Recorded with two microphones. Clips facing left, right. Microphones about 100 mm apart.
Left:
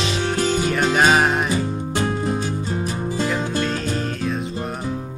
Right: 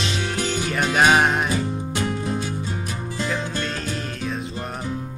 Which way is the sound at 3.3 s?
10° left (ahead or behind).